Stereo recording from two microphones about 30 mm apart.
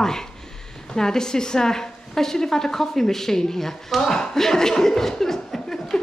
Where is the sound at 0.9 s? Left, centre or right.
Left.